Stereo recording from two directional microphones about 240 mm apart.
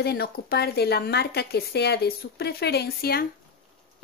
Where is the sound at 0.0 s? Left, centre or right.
Left.